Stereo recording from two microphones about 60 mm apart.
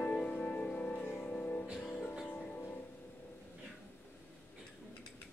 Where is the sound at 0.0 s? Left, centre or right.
Left.